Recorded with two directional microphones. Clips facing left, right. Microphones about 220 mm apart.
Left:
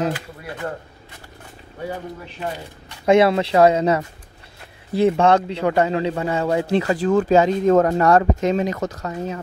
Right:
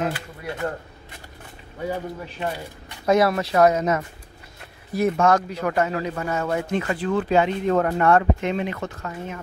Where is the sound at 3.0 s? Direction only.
25° left (ahead or behind).